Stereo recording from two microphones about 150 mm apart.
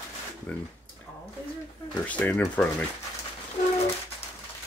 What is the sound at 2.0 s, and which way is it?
Speech, 10° left (ahead or behind).